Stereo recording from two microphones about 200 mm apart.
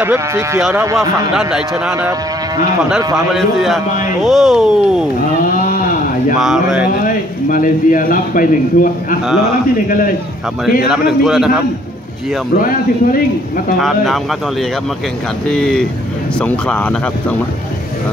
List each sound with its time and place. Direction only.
0.0 s speech: 10° right (ahead or behind)
0.6 s speech: 5° right (ahead or behind)
0.8 s speech: 15° right (ahead or behind)
1.3 s speech: 5° right (ahead or behind)
3.3 s speech: centre (ahead or behind)
6.4 s speech: 5° right (ahead or behind)
7.4 s speech: 40° left (ahead or behind)
10.9 s speech: centre (ahead or behind)
12.5 s speech: 45° left (ahead or behind)
13.7 s speech: centre (ahead or behind)